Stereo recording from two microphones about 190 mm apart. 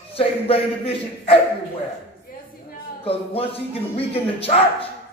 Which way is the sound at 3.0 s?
30° left (ahead or behind).